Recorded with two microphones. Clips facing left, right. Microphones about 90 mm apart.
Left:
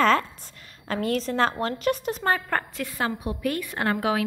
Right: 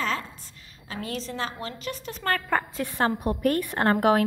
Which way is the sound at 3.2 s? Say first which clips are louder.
Right 4 dB; 50° right (ahead or behind).